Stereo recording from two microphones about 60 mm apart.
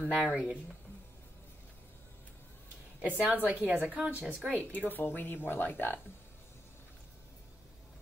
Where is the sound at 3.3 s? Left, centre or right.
Right.